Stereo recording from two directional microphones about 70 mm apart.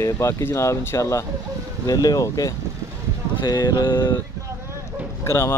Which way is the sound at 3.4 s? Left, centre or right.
Left.